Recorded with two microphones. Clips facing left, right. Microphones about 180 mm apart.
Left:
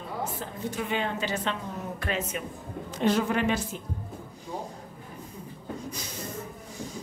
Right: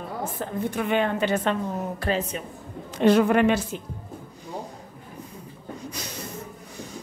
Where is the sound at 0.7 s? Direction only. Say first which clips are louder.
Right 5 dB; 60° right (ahead or behind).